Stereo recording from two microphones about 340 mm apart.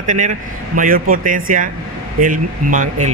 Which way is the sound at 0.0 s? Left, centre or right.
Right.